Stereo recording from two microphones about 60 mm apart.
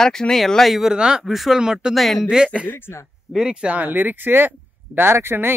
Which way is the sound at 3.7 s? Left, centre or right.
Right.